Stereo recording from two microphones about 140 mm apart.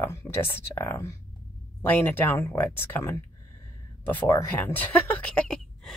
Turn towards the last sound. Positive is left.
turn(degrees=5)  # may be behind; listen again after turning